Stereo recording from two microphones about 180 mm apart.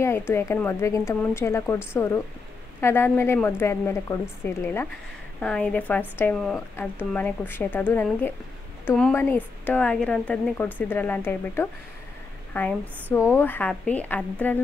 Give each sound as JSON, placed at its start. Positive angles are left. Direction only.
{"t": 0.3, "sound": "speech", "side_deg": 15}